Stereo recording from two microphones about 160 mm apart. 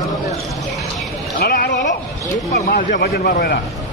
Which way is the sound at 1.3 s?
70° left (ahead or behind).